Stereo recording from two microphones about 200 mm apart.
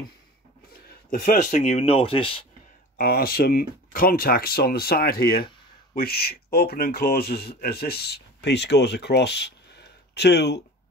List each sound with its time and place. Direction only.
1.1 s speech: 40° left (ahead or behind)
3.0 s speech: 50° left (ahead or behind)